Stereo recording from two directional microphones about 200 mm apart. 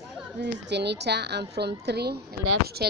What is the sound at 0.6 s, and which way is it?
A woman's voice, 55° right (ahead or behind).